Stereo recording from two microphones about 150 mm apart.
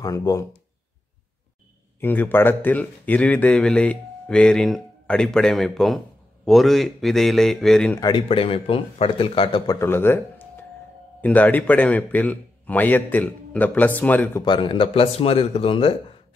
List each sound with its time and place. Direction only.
0.0 s speech: 25° left (ahead or behind)
2.0 s speech: 15° left (ahead or behind)
8.0 s a man's voice: 35° left (ahead or behind)
9.8 s speech: 15° left (ahead or behind)
14.4 s a man's voice: 30° left (ahead or behind)